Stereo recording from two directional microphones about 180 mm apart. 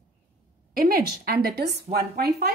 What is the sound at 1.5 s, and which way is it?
Speech, 65° right (ahead or behind).